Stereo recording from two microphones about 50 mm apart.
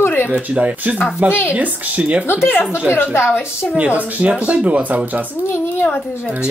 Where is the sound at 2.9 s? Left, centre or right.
Left.